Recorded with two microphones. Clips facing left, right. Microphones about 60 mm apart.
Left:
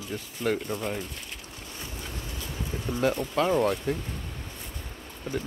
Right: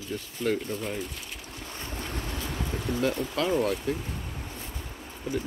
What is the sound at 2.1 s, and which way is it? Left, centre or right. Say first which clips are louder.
Boat: right 4 dB; right.